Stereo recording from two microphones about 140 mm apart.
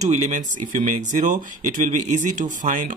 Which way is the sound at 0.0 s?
60° right (ahead or behind).